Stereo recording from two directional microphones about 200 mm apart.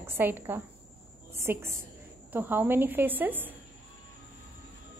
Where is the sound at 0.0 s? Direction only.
10° right (ahead or behind).